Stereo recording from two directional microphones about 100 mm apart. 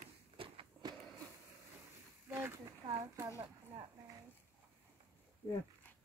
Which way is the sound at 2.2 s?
25° right (ahead or behind).